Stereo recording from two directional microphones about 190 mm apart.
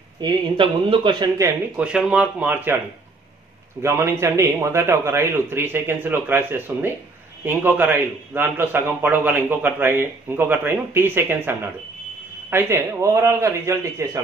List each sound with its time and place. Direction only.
0.2 s speech: 25° right (ahead or behind)
1.8 s a man's voice: 5° right (ahead or behind)
3.8 s a man's voice: 15° right (ahead or behind)